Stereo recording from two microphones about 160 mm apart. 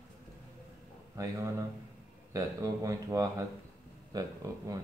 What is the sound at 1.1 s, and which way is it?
Speech, 20° right (ahead or behind).